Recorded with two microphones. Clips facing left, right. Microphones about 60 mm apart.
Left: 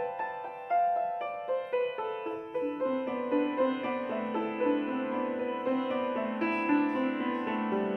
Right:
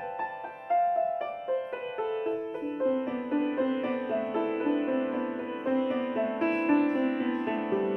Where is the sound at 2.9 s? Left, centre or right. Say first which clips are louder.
Right 1 dB; centre.